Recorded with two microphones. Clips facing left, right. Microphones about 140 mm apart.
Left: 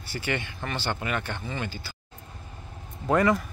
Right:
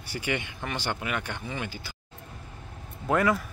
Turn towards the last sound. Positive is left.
turn(degrees=0)  # may be behind; listen again after turning